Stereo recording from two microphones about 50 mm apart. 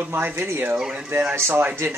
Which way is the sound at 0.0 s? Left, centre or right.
Right.